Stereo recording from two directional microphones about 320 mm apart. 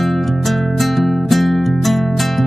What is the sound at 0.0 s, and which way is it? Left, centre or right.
Music, centre.